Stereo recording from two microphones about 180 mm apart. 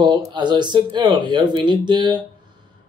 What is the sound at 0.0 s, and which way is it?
A man's voice, 25° right (ahead or behind).